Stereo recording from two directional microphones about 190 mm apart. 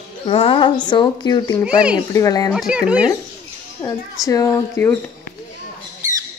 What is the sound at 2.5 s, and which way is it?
Speech, centre (ahead or behind).